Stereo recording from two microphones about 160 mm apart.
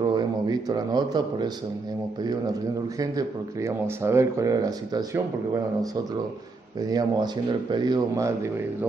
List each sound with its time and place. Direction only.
0.0 s a man's voice: 25° right (ahead or behind)
3.0 s speech: 20° right (ahead or behind)
6.8 s speech: 25° right (ahead or behind)